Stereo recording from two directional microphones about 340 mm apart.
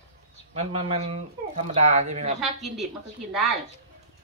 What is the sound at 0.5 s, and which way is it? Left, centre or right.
Speech, centre.